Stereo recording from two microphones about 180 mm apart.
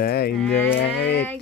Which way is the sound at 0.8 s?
70° left (ahead or behind).